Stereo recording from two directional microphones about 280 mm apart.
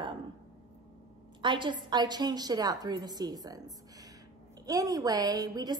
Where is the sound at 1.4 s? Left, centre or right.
Centre.